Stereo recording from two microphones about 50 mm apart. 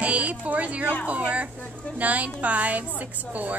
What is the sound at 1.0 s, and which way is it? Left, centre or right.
A woman's voice, right.